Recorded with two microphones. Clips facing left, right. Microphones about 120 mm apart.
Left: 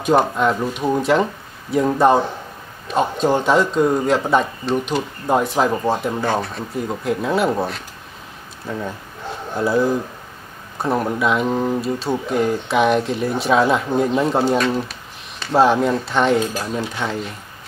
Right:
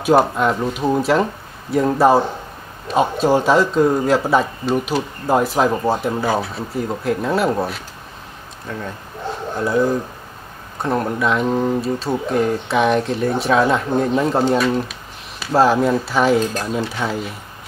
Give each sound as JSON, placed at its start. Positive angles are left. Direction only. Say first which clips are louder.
{"t": 0.0, "sound": "speech", "louder": "right 1 dB", "side_deg": -5}
{"t": 9.6, "sound": "speech", "louder": "even", "side_deg": 5}